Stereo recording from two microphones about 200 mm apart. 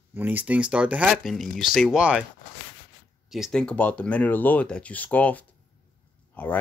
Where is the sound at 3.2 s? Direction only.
Centre (ahead or behind).